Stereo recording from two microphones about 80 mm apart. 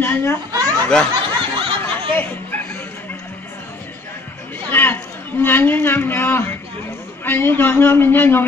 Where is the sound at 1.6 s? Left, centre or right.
Right.